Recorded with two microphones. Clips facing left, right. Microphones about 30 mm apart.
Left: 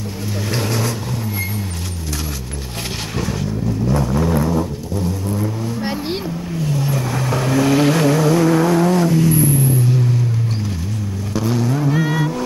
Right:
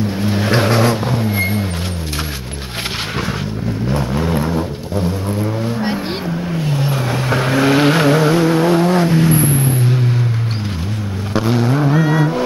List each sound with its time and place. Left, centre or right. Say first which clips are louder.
0.2 s vehicle: right 6 dB; right
3.9 s vehicle: even; right
5.4 s music: right 3 dB; centre
6.6 s vehicle: left 1 dB; right
11.3 s vehicle: right 4 dB; right
12.0 s vehicle: right 4 dB; centre